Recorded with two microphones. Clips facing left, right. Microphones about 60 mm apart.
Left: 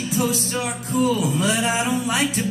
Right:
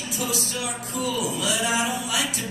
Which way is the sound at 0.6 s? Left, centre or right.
Left.